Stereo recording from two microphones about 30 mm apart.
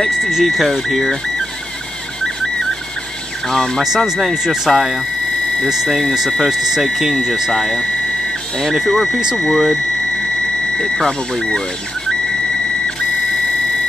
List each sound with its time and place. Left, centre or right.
0.2 s speech: centre
3.4 s speech: centre
3.8 s speech: centre
7.5 s speech: centre
8.8 s speech: centre